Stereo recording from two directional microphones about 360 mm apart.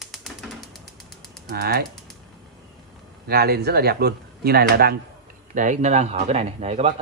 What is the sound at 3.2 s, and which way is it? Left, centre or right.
Speech, right.